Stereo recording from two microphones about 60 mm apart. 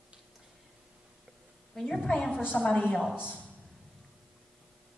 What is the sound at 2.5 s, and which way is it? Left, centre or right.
Speech, centre.